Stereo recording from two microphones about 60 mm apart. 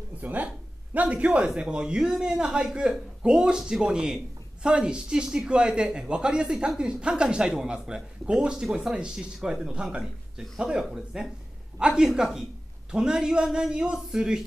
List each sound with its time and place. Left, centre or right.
0.2 s a man's voice: right; by 14.4 s centre